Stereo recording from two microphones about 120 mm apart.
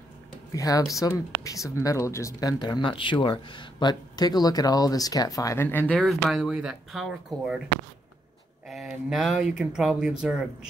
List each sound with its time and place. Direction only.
0.5 s speech: 30° left (ahead or behind)
2.6 s speech: 40° left (ahead or behind); by 5.9 s 15° left (ahead or behind)
5.9 s speech: centre (ahead or behind)
8.6 s speech: centre (ahead or behind)